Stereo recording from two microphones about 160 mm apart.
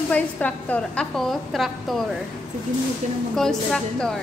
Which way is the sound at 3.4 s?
5° left (ahead or behind).